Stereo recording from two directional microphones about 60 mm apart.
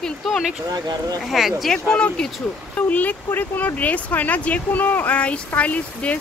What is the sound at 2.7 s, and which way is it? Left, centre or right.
Speech, left.